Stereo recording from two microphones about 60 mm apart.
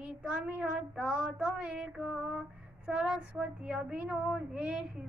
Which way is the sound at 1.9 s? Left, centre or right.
Centre.